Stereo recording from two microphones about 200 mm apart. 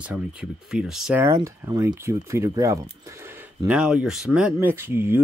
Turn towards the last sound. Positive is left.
turn(degrees=-10)  # may be behind; listen again after turning